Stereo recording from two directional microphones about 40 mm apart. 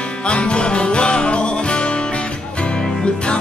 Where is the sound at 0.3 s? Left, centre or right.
Left.